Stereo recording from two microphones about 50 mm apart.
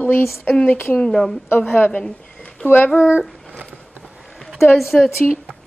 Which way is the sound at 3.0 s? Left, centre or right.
Centre.